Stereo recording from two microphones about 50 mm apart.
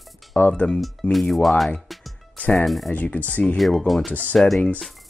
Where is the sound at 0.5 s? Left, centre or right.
Left.